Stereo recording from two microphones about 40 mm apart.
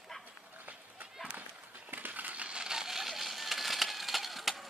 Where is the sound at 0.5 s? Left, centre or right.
Right.